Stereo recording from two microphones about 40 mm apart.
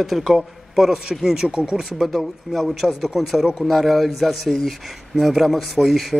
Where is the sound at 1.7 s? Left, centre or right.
Centre.